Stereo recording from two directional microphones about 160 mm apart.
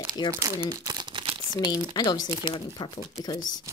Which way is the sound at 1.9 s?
25° left (ahead or behind).